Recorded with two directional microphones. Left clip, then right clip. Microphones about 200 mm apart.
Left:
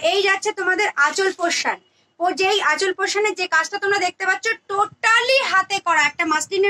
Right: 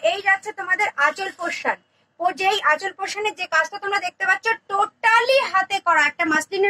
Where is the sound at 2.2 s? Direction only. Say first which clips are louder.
Left 2 dB; 30° left (ahead or behind).